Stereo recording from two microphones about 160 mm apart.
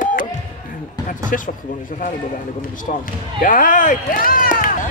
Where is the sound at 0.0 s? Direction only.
60° left (ahead or behind).